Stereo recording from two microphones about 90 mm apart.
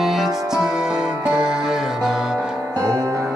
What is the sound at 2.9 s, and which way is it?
Music, 40° right (ahead or behind).